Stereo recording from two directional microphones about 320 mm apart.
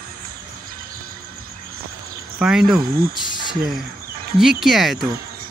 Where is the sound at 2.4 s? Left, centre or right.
Centre.